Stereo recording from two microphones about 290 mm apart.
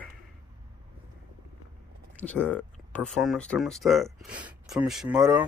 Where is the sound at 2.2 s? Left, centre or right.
Centre.